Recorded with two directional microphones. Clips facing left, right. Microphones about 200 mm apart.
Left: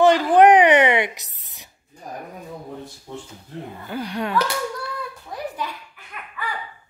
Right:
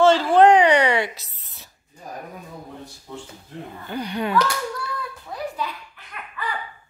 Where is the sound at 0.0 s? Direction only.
15° left (ahead or behind).